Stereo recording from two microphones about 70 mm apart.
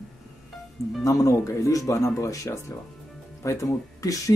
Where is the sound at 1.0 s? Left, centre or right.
Left.